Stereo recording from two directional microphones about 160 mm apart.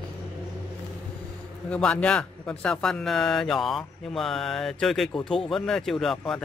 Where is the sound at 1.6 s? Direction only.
5° left (ahead or behind).